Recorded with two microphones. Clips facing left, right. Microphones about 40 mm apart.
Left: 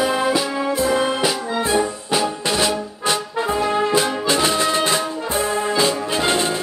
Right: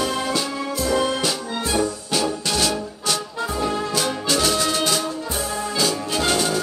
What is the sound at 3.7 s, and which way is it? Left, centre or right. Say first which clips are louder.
Brass instrument: left 5 dB; left.